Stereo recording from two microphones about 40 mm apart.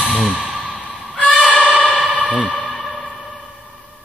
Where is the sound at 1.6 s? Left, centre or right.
Right.